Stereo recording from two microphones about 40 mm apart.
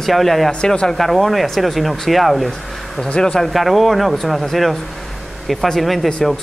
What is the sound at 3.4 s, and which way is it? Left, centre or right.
Speech, centre.